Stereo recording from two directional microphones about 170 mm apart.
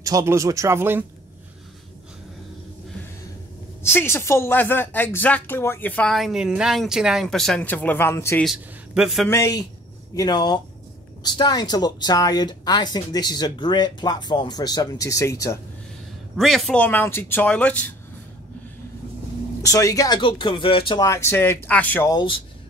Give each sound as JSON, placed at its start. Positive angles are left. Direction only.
{"t": 0.0, "sound": "speech", "side_deg": -20}
{"t": 3.8, "sound": "speech", "side_deg": 15}
{"t": 8.5, "sound": "a man's voice", "side_deg": 0}
{"t": 9.3, "sound": "speech", "side_deg": 20}
{"t": 16.3, "sound": "speech", "side_deg": 0}
{"t": 19.6, "sound": "speech", "side_deg": 20}
{"t": 22.1, "sound": "speech", "side_deg": 30}